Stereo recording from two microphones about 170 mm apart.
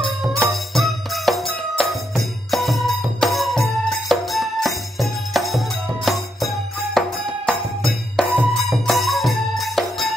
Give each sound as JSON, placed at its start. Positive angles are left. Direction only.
{"t": 0.5, "sound": "music", "side_deg": 0}